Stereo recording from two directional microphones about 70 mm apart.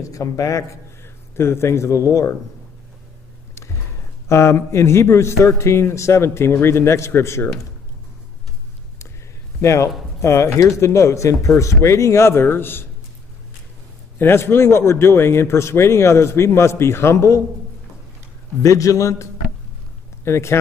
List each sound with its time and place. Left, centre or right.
0.0 s speech: left
1.3 s a man's voice: left
4.3 s a man's voice: left
9.6 s speech: left
14.1 s a man's voice: left
18.6 s speech: left
20.2 s a man's voice: left